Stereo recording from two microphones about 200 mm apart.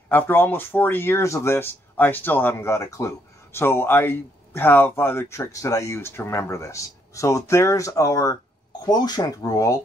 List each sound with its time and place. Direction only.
0.1 s speech: 10° left (ahead or behind)